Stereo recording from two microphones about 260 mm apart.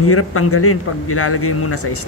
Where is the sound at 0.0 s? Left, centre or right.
Left.